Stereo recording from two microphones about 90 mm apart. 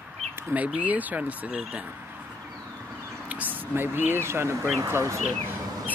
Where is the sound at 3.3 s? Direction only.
20° right (ahead or behind).